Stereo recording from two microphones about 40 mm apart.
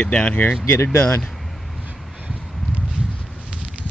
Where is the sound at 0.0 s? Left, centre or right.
Left.